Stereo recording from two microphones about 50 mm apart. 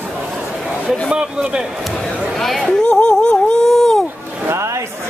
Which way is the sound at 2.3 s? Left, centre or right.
Centre.